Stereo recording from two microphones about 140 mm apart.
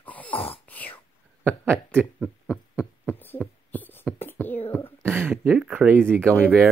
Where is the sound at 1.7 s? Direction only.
15° right (ahead or behind).